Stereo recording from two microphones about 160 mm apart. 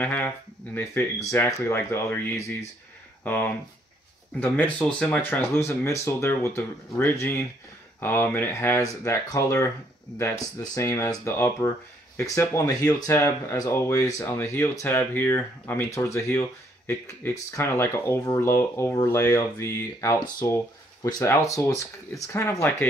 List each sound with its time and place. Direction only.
0.0 s speech: 10° left (ahead or behind)
4.4 s speech: 10° left (ahead or behind)